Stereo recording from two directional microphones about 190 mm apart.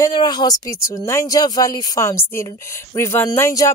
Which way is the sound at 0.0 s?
20° left (ahead or behind).